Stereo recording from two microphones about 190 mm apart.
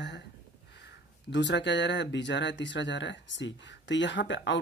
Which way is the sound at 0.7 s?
60° left (ahead or behind).